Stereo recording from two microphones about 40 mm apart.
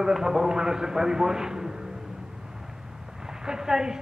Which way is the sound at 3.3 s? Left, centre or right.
Centre.